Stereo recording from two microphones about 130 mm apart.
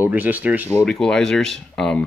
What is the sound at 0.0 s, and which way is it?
Speech, 10° right (ahead or behind).